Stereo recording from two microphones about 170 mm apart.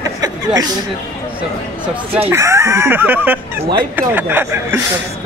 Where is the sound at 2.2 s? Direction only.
15° right (ahead or behind).